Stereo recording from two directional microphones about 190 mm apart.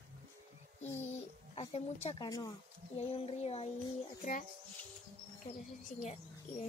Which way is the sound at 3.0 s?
30° left (ahead or behind).